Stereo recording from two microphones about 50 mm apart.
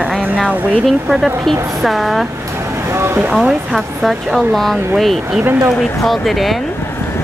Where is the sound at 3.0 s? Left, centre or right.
Right.